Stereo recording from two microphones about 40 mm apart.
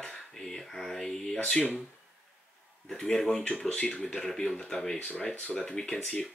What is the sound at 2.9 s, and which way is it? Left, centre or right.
Speech, centre.